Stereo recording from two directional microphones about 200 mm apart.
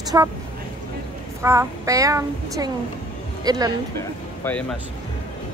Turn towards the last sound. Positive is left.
turn(degrees=5)  # may be behind; listen again after turning